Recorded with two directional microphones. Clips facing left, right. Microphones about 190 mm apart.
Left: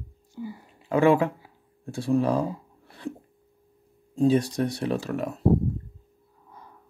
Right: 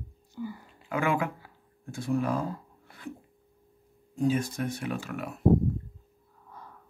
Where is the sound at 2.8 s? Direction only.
30° left (ahead or behind).